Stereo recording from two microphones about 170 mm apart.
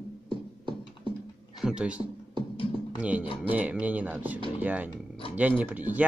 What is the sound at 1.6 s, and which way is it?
Speech, 5° right (ahead or behind).